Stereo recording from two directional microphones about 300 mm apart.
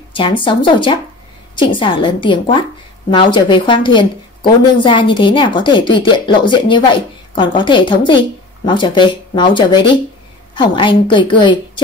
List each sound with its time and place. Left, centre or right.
0.1 s a woman's voice: centre